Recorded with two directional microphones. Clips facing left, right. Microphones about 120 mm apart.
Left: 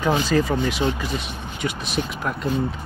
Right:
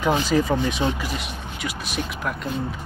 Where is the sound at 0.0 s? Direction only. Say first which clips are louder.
Even; 15° right (ahead or behind).